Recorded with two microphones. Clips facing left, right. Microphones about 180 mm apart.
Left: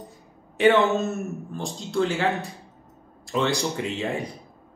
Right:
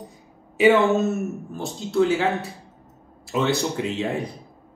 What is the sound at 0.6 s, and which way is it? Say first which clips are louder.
Speech: right 2 dB; 10° right (ahead or behind).